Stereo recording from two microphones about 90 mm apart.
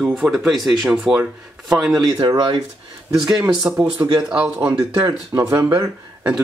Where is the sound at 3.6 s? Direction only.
15° right (ahead or behind).